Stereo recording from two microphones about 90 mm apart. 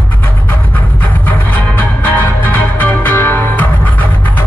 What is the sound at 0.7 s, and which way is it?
Music, 20° left (ahead or behind).